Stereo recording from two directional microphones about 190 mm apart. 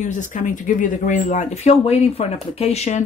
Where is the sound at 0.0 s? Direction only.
40° left (ahead or behind).